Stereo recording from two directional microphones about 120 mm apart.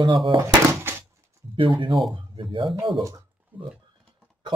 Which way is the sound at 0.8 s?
20° right (ahead or behind).